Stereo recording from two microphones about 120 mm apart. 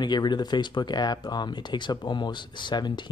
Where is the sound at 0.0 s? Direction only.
35° left (ahead or behind).